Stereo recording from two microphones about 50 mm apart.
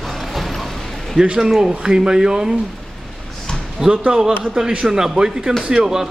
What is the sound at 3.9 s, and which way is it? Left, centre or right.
Speech, centre.